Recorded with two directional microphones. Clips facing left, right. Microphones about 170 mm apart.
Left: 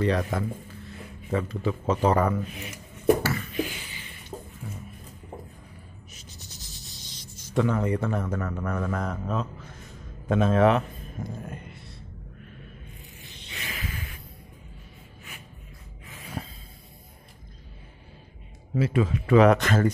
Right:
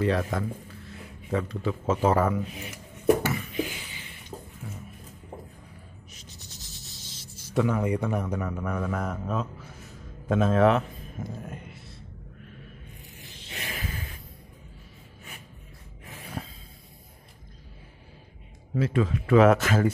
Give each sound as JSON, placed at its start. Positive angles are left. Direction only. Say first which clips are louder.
{"t": 0.0, "sound": "speech", "louder": "left 1 dB", "side_deg": 0}
{"t": 3.2, "sound": "a sound", "louder": "even", "side_deg": -15}
{"t": 4.3, "sound": "music", "louder": "left 2 dB", "side_deg": 10}
{"t": 6.8, "sound": "speech", "louder": "left 1 dB", "side_deg": -5}
{"t": 13.5, "sound": "a sound", "louder": "right 2 dB", "side_deg": -60}
{"t": 16.4, "sound": "snort", "louder": "left 1 dB", "side_deg": 0}
{"t": 18.8, "sound": "speech", "louder": "left 1 dB", "side_deg": 5}